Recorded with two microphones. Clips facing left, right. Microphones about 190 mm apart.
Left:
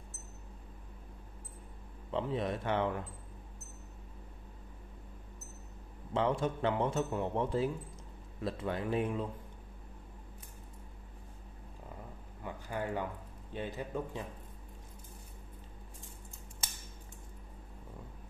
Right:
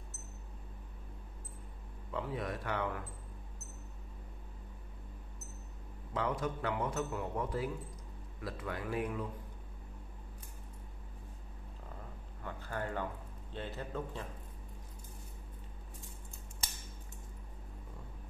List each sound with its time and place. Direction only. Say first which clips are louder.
2.0 s a man's voice: left 4 dB; 25° left (ahead or behind)
6.1 s a man's voice: left 4 dB; 25° left (ahead or behind)
12.4 s a sound: left 2 dB; 15° left (ahead or behind)
13.5 s a man's voice: left 3 dB; 15° left (ahead or behind)